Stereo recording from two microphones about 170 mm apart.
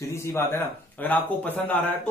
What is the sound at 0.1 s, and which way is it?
Speech, 15° left (ahead or behind).